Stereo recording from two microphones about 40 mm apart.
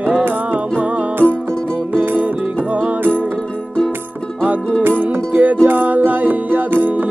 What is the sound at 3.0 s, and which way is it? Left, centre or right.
Music, right.